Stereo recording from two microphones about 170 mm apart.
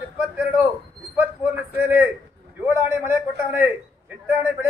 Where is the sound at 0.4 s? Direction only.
10° right (ahead or behind).